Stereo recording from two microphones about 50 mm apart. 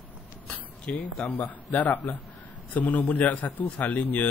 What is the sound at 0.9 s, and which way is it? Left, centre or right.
Speech, left.